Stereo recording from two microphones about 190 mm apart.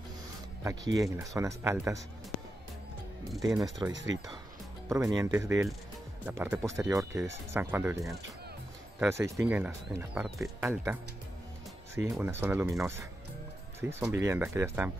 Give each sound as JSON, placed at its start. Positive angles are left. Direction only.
{"t": 0.7, "sound": "speech", "side_deg": -15}
{"t": 3.3, "sound": "speech", "side_deg": -20}